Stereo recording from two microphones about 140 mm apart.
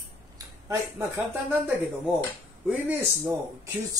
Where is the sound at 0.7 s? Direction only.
15° right (ahead or behind).